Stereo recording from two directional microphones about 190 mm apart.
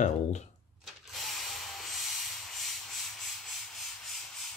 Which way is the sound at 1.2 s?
Centre (ahead or behind).